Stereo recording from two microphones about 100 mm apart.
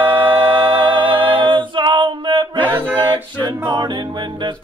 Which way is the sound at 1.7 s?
50° right (ahead or behind).